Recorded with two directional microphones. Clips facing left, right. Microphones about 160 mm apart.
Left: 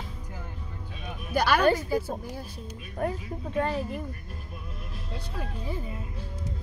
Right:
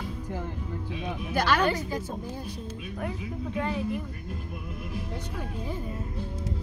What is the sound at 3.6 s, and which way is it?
Speech, 40° left (ahead or behind).